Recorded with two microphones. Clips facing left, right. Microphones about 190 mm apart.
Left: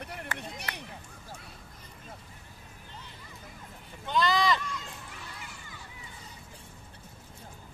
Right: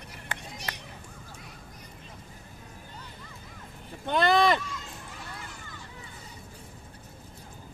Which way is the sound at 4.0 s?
55° right (ahead or behind).